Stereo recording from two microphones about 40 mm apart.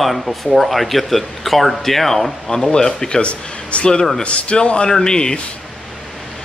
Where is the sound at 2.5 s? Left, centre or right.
Centre.